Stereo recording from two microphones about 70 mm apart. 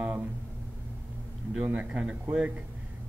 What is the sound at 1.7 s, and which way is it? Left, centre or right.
Speech, centre.